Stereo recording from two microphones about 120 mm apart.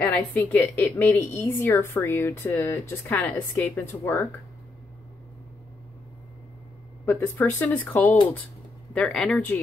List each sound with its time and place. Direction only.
0.0 s a woman's voice: 10° left (ahead or behind)
7.1 s a woman's voice: 15° left (ahead or behind)
8.9 s speech: 5° left (ahead or behind)